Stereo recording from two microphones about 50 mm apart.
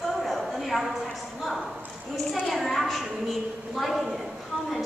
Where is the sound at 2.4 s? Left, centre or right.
Centre.